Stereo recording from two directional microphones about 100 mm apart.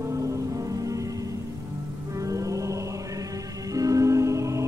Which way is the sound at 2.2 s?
35° right (ahead or behind).